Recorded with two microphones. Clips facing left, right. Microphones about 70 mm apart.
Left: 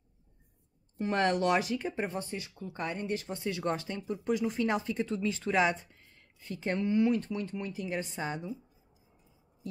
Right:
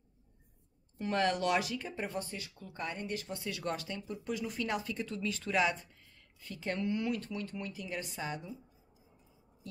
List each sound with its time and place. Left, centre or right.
0.9 s speech: left